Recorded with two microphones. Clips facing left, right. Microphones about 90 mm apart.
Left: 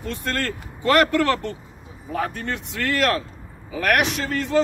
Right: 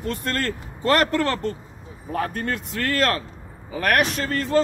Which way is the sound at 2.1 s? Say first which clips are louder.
Right 1 dB; 45° right (ahead or behind).